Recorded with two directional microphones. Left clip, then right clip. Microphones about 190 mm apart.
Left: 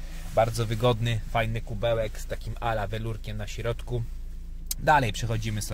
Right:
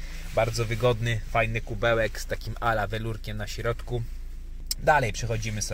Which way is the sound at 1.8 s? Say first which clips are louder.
Right 3 dB; 15° right (ahead or behind).